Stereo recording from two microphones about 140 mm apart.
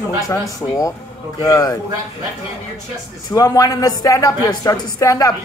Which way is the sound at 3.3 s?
25° left (ahead or behind).